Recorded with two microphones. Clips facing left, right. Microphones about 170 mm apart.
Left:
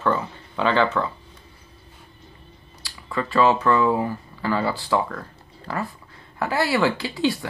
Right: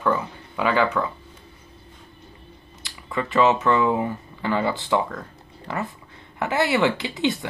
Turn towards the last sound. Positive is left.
turn(degrees=-20)  # may be behind; listen again after turning